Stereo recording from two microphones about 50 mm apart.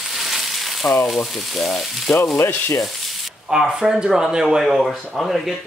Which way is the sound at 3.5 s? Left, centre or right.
Centre.